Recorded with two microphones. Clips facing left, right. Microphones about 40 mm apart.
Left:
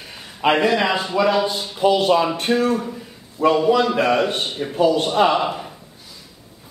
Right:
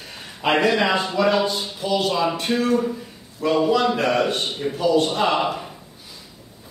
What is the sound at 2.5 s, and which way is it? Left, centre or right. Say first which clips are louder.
Speech: left 5 dB; centre.